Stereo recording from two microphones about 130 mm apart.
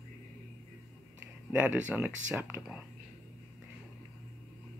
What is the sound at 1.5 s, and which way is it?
Speech, 10° right (ahead or behind).